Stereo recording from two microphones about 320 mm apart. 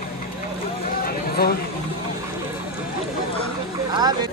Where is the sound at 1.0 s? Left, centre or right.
Left.